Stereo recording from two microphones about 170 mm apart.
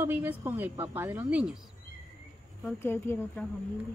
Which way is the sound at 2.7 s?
15° left (ahead or behind).